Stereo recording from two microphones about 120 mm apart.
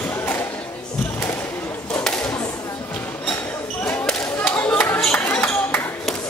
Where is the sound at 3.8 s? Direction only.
10° left (ahead or behind).